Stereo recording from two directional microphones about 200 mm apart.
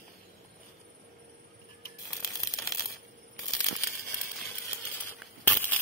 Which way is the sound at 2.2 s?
15° left (ahead or behind).